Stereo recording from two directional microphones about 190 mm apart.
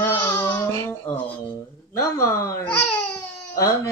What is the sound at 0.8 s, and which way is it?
Speech, 10° left (ahead or behind).